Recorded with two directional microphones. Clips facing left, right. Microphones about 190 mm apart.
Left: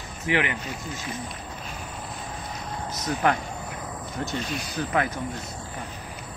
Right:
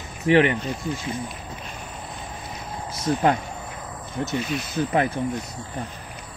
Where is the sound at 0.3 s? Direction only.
35° right (ahead or behind).